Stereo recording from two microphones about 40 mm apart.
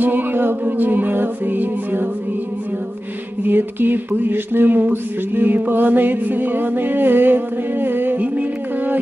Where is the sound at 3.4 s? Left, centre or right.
Right.